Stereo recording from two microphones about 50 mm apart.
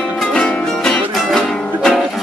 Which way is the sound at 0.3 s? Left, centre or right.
Centre.